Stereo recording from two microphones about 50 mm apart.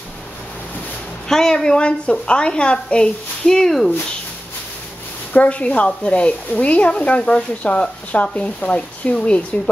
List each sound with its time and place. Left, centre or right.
1.3 s a woman's voice: centre
5.3 s speech: left